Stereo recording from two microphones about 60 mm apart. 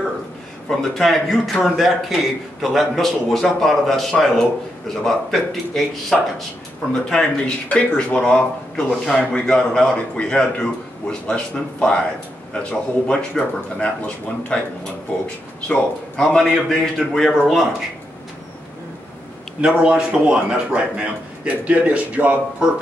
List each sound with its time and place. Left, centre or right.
0.7 s a man's voice: centre
13.0 s a man's voice: left
16.3 s a man's voice: centre
19.6 s a man's voice: centre